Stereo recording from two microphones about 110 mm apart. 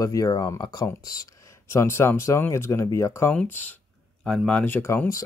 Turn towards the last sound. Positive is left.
turn(degrees=20)  # may be behind; listen again after turning